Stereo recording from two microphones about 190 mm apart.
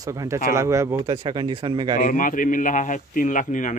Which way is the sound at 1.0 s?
25° right (ahead or behind).